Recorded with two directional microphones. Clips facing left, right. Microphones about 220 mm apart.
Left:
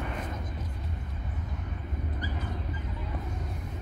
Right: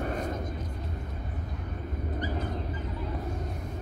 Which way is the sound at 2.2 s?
45° right (ahead or behind).